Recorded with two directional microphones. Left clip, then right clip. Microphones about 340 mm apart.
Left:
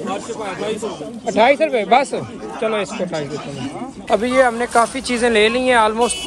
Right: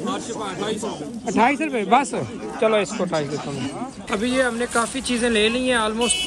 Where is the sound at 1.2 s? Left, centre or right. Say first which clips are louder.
Left 6 dB; centre.